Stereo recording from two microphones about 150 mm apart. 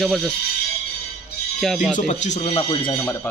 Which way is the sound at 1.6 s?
Centre (ahead or behind).